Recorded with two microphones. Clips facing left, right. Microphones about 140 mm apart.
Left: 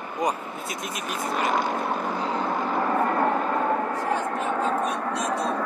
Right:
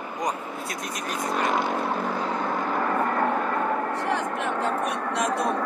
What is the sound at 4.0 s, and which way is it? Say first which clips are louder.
Vehicle: left 1 dB; 75° right (ahead or behind).